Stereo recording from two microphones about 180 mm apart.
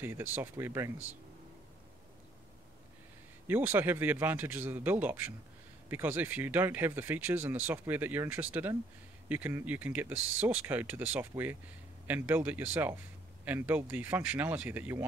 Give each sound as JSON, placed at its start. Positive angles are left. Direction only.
{"t": 0.0, "sound": "speech", "side_deg": -10}
{"t": 3.4, "sound": "speech", "side_deg": -10}
{"t": 10.1, "sound": "speech", "side_deg": -90}
{"t": 10.4, "sound": "speech", "side_deg": -10}